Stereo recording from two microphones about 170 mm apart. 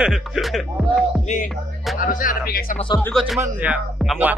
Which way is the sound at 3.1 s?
Centre (ahead or behind).